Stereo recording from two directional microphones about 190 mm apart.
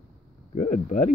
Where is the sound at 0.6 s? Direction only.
40° left (ahead or behind).